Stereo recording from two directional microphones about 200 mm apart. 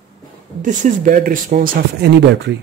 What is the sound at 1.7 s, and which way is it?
Speech, 55° right (ahead or behind).